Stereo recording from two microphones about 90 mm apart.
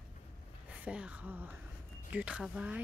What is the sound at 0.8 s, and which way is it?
Speech, 15° right (ahead or behind).